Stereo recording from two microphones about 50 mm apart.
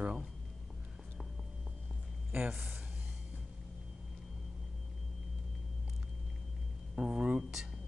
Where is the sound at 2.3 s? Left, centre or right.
Right.